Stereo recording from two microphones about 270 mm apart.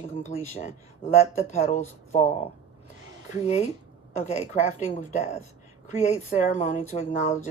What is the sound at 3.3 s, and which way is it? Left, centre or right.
A woman's voice, left.